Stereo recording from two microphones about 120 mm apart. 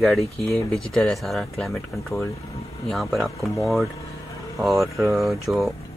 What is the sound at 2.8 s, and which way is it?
Speech, centre (ahead or behind).